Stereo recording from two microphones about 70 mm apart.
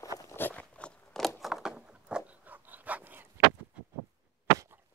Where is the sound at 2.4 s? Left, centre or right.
Right.